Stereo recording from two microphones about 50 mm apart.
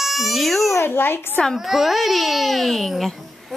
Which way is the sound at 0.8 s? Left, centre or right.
Left.